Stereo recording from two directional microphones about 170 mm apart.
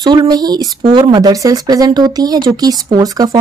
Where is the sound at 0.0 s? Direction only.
25° right (ahead or behind).